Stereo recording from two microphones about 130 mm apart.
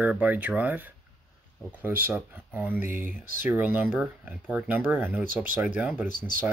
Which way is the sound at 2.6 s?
15° right (ahead or behind).